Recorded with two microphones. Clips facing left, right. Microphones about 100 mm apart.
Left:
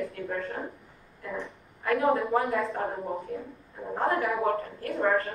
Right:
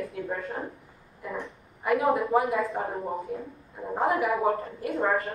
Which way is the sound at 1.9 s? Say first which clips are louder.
Right 1 dB; centre (ahead or behind).